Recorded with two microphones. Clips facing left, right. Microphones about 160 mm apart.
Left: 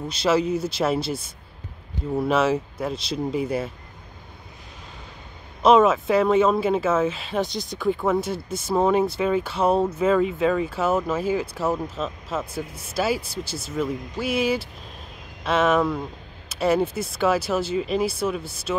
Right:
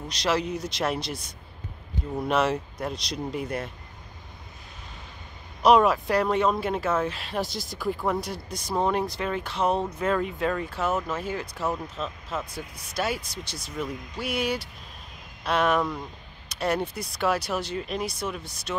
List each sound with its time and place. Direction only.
0.1 s speech: 5° left (ahead or behind)
2.1 s speech: 5° left (ahead or behind)
5.6 s speech: centre (ahead or behind)
12.5 s speech: 25° left (ahead or behind)
13.6 s speech: centre (ahead or behind)